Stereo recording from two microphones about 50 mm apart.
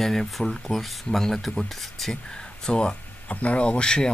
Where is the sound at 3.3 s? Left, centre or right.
Left.